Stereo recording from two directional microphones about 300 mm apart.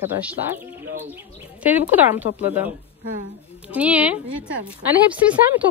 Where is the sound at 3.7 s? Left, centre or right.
Centre.